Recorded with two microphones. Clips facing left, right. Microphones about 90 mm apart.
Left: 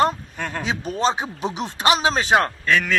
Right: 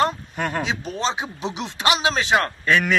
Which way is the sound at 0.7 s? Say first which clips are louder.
Left 3 dB; 45° left (ahead or behind).